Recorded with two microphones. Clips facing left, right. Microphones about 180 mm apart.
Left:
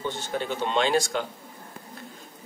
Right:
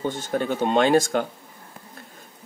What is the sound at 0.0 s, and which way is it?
Speech, 45° right (ahead or behind).